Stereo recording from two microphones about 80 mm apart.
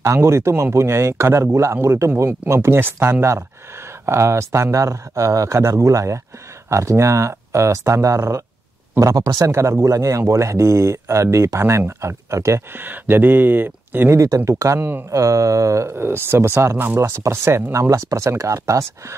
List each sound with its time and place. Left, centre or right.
0.0 s speech: right
12.7 s speech: right
14.1 s speech: right
14.8 s speech: right
15.0 s speech: right